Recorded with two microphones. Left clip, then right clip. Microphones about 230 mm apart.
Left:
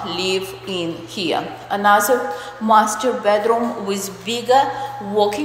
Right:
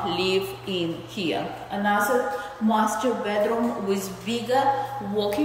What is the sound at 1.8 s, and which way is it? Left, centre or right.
Speech, left.